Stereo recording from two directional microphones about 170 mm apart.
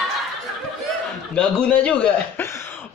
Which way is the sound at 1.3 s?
5° left (ahead or behind).